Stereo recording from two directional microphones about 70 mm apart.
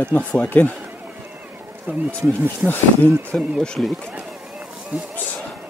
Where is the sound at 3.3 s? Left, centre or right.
Centre.